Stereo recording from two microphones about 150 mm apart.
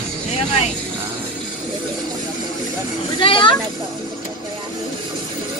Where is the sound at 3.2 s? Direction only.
35° left (ahead or behind).